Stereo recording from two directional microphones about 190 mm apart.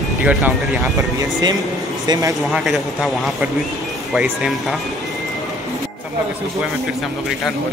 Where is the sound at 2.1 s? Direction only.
20° right (ahead or behind).